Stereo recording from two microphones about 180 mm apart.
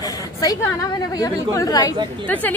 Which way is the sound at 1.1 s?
20° left (ahead or behind).